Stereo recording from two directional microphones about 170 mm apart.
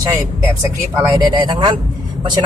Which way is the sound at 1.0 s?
20° right (ahead or behind).